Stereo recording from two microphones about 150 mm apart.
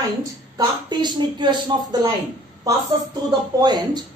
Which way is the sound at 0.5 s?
30° right (ahead or behind).